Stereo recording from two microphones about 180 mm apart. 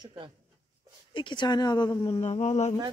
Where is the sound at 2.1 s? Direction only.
35° left (ahead or behind).